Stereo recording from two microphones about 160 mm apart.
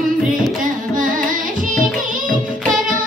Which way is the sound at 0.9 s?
55° right (ahead or behind).